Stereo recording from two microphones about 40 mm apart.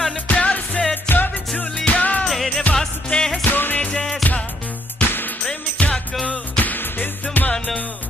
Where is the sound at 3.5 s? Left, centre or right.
Left.